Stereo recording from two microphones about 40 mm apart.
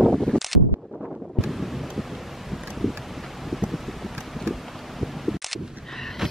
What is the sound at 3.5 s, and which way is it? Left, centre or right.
Wind, centre.